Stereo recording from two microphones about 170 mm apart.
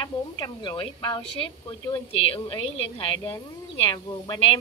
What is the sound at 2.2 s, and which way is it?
A woman's voice, 30° left (ahead or behind).